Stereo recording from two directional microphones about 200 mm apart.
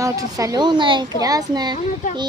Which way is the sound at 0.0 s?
15° right (ahead or behind).